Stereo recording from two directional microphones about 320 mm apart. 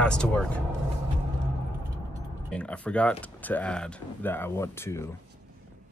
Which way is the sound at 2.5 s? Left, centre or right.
Centre.